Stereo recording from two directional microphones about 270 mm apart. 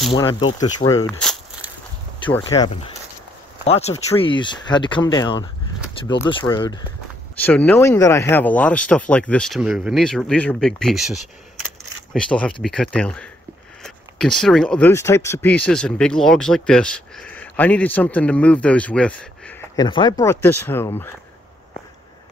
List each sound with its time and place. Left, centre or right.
0.1 s speech: centre
2.3 s speech: centre